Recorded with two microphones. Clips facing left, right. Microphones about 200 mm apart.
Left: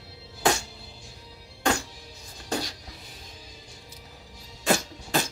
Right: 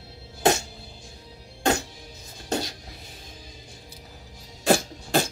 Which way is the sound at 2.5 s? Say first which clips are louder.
Right 3 dB; 25° right (ahead or behind).